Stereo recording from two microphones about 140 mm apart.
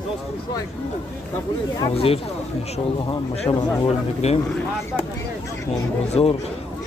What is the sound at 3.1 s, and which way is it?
Speech, 30° left (ahead or behind).